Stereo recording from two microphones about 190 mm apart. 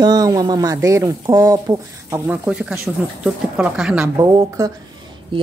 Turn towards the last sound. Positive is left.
turn(degrees=-25)  # may be behind; listen again after turning